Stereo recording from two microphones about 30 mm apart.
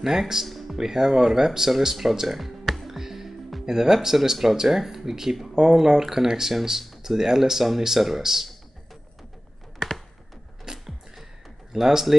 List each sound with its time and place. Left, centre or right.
0.0 s speech: centre
0.5 s music: centre
0.7 s speech: centre
3.0 s music: centre
3.6 s speech: centre
10.7 s music: centre
11.7 s speech: centre